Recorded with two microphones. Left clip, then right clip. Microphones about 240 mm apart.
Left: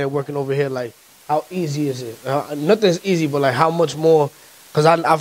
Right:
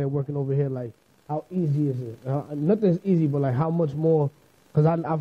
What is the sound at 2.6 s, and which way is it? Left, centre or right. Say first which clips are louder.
A man's voice: left 7 dB; centre.